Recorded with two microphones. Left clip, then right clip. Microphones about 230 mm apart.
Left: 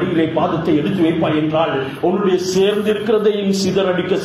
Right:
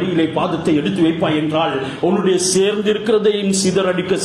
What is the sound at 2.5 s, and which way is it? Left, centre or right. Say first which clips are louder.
A man's voice: even; right.